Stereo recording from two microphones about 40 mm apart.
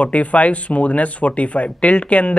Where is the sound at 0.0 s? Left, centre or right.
Left.